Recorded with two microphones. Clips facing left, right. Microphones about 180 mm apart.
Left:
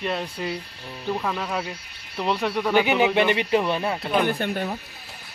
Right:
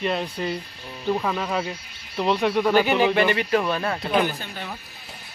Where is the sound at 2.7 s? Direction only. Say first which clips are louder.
Left 3 dB; 15° left (ahead or behind).